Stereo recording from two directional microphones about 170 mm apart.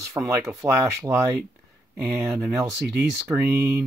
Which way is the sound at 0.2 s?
20° right (ahead or behind).